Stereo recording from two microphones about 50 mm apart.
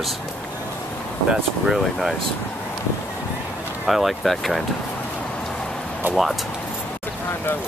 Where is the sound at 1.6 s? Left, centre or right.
Centre.